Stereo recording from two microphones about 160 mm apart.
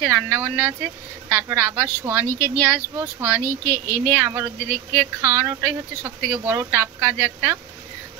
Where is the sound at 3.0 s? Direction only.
10° right (ahead or behind).